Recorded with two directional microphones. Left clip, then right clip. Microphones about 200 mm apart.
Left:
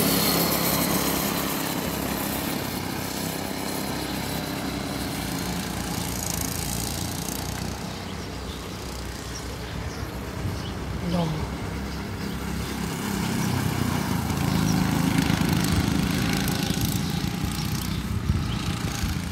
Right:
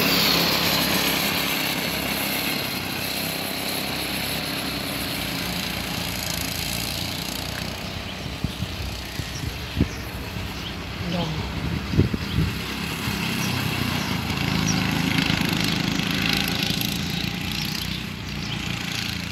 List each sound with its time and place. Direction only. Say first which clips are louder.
0.0 s a sound: right 4 dB; 20° left (ahead or behind); by 2.6 s 5° right (ahead or behind)
3.2 s vehicle: right 3 dB; 5° right (ahead or behind)
13.0 s vehicle: right 2 dB; centre (ahead or behind)